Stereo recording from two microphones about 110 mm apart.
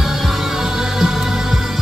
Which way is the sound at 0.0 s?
Centre (ahead or behind).